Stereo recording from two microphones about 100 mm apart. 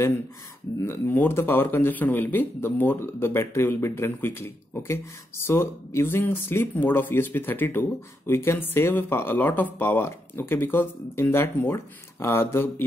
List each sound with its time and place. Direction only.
0.8 s speech: 20° left (ahead or behind)